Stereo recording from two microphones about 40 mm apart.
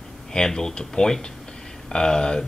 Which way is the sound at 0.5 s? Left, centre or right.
Centre.